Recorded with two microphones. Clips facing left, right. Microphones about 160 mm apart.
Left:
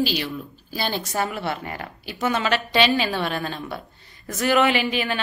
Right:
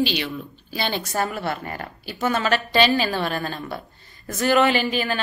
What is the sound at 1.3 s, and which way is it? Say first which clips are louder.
Speech: right 1 dB; 40° right (ahead or behind).